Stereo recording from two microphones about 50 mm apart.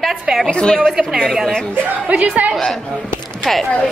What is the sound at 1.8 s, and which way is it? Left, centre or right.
Speech, right.